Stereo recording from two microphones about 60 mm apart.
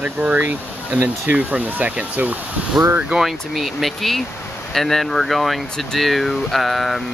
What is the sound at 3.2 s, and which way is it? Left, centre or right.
Speech, centre.